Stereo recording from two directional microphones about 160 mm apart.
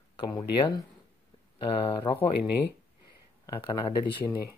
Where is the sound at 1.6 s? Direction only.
35° left (ahead or behind).